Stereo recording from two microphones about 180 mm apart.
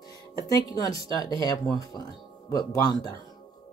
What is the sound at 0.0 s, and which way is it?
Speech, 20° left (ahead or behind).